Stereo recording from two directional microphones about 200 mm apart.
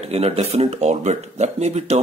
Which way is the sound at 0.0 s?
30° right (ahead or behind).